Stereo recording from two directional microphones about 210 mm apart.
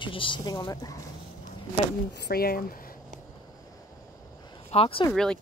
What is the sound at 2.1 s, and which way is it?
Speech, 50° left (ahead or behind).